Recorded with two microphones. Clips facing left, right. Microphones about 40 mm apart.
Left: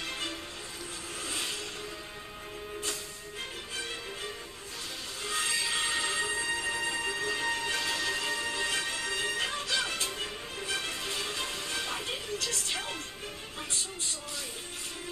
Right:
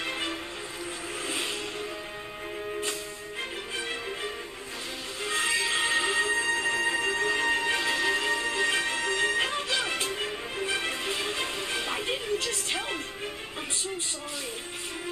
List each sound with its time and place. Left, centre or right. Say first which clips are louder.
0.0 s music: right 5 dB; right
5.2 s music: right 5 dB; centre